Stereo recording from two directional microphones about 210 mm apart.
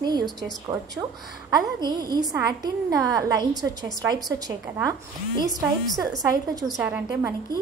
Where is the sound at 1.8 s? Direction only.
20° right (ahead or behind).